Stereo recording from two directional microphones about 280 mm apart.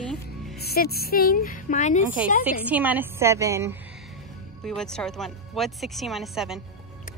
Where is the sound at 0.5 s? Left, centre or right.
Left.